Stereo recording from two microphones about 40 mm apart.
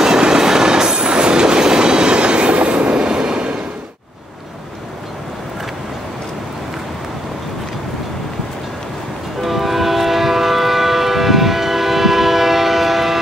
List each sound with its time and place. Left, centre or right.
0.0 s train: centre
9.4 s train: centre